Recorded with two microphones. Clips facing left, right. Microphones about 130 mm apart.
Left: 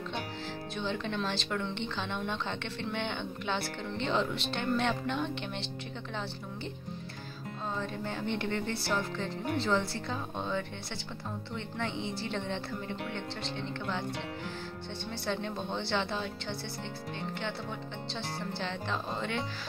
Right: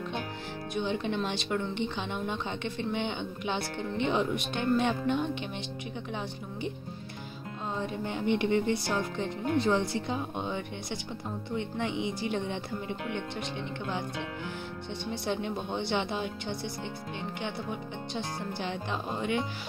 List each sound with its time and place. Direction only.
0.7 s speech: 15° right (ahead or behind)
7.7 s speech: 15° right (ahead or behind)
15.0 s speech: 15° right (ahead or behind)